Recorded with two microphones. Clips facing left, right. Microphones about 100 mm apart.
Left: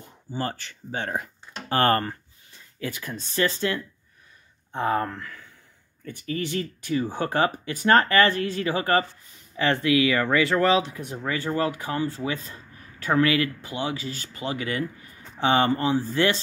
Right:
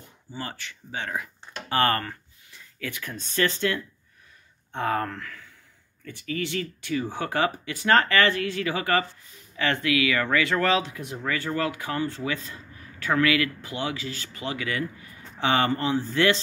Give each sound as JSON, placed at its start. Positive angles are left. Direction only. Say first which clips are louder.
{"t": 0.3, "sound": "speech", "louder": "left 6 dB", "side_deg": 40}
{"t": 4.7, "sound": "speech", "louder": "left 2 dB", "side_deg": 25}
{"t": 6.0, "sound": "speech", "louder": "left 1 dB", "side_deg": 35}
{"t": 8.0, "sound": "speech", "louder": "left 2 dB", "side_deg": 25}
{"t": 8.3, "sound": "a man's voice", "louder": "left 1 dB", "side_deg": 35}